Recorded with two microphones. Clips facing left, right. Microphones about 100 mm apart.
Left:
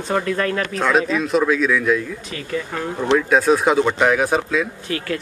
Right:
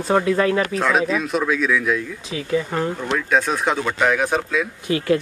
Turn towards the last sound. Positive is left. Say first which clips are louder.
# right 4 dB
turn(degrees=-20)  # may be behind; listen again after turning